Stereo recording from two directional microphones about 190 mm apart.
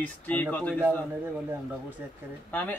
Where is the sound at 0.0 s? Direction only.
10° left (ahead or behind).